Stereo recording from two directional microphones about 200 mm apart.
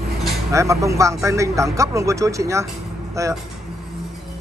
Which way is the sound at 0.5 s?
15° right (ahead or behind).